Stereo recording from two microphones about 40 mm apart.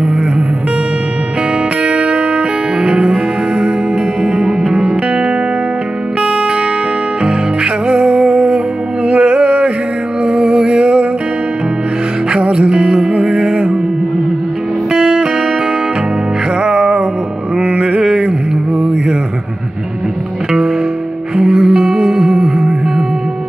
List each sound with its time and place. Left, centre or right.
1.8 s music: right
4.6 s music: centre
7.2 s music: right
12.3 s music: right
14.9 s music: right
16.6 s music: right
17.6 s mantra: right
18.8 s a sound: right
21.4 s music: centre